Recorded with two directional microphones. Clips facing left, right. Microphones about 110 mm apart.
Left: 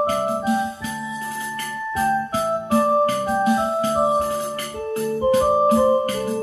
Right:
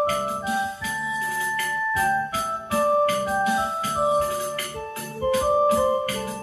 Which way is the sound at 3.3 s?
35° left (ahead or behind).